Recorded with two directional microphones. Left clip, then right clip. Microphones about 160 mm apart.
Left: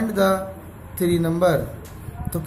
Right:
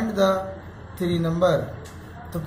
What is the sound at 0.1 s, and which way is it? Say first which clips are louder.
A man's voice: left 1 dB; 45° left (ahead or behind).